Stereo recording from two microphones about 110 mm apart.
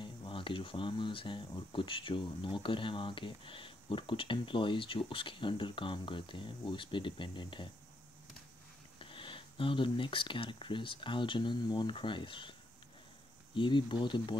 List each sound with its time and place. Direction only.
0.0 s speech: 50° left (ahead or behind)
9.0 s speech: 50° left (ahead or behind)
13.6 s speech: 45° left (ahead or behind)